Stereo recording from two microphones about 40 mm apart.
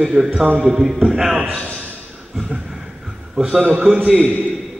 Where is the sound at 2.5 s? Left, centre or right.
Centre.